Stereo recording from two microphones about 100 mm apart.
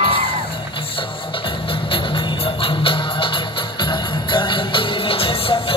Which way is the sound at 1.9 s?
60° left (ahead or behind).